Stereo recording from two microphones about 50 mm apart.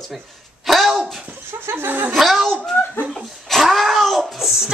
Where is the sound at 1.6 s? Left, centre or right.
Right.